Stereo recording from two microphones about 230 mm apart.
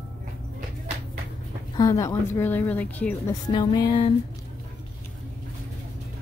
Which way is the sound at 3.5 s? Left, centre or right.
Left.